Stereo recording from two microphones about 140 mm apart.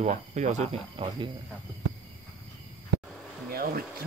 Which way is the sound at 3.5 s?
90° right.